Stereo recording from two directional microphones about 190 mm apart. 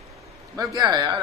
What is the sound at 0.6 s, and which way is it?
Speech, 20° right (ahead or behind).